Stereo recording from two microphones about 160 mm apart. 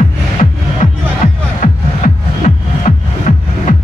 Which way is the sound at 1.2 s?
50° left (ahead or behind).